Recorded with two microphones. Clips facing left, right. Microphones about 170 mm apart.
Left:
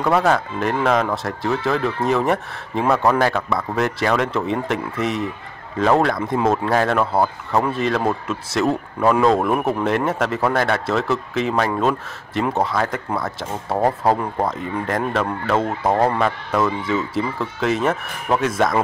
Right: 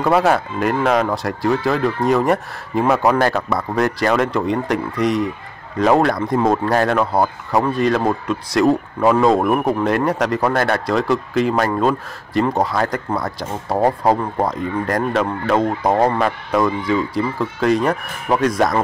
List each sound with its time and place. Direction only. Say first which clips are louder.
0.0 s speech: right 2 dB; 10° right (ahead or behind)
2.9 s speech: right 1 dB; 15° right (ahead or behind)
3.2 s speech: right 2 dB; centre (ahead or behind)
15.8 s speech: right 2 dB; 20° right (ahead or behind)
16.2 s speech: right 2 dB; centre (ahead or behind)